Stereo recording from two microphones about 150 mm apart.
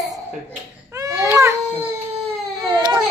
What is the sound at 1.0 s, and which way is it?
Baby cry, 20° right (ahead or behind).